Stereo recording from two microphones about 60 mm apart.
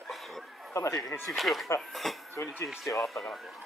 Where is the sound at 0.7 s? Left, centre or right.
Left.